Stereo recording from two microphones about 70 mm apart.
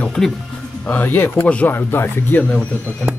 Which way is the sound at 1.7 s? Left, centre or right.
Left.